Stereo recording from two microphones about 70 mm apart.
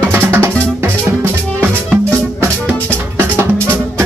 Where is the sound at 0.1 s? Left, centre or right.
Right.